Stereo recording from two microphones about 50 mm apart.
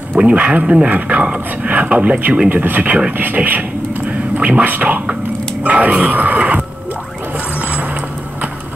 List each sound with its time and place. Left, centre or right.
0.2 s speech: right
4.0 s a sound: right
5.6 s speech: right
7.3 s vehicle: right